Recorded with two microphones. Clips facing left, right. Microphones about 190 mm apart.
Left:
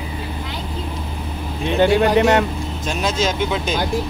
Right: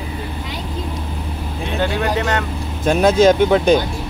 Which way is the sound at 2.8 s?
55° right (ahead or behind).